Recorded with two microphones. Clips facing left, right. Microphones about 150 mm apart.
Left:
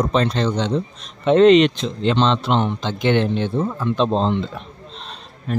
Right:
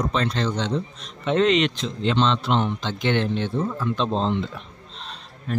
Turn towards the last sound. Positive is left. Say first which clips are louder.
# left 3 dB
turn(degrees=20)  # may be behind; listen again after turning